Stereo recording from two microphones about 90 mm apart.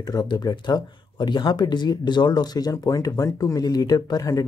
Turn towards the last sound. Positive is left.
turn(degrees=45)  # may be behind; listen again after turning